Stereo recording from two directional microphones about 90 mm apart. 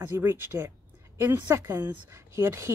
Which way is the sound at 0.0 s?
25° right (ahead or behind).